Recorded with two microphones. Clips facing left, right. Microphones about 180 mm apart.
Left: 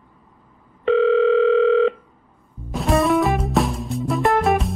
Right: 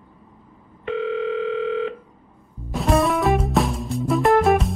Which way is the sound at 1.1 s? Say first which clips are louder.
Left 8 dB; 90° left.